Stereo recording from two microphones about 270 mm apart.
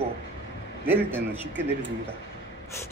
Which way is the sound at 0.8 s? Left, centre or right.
Centre.